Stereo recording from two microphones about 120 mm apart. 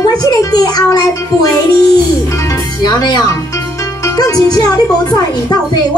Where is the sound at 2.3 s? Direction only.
25° left (ahead or behind).